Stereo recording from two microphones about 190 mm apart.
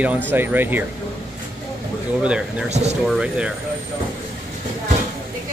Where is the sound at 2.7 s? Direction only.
35° right (ahead or behind).